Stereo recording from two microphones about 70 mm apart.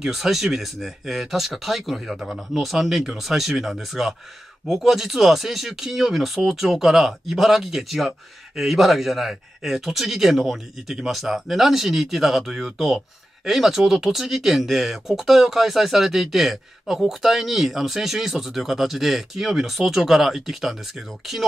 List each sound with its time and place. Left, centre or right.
0.0 s speech: centre